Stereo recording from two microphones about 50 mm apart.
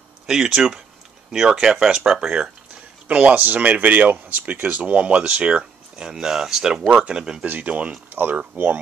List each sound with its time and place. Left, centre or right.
0.3 s speech: centre
3.1 s speech: right
7.4 s speech: right
8.1 s speech: right